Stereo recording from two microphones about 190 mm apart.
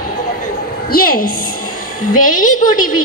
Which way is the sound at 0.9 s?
50° left (ahead or behind).